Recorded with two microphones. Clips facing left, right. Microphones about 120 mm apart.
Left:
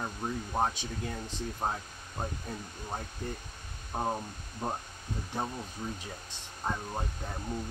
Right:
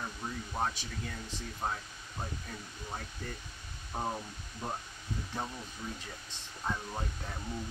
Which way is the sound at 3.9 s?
20° left (ahead or behind).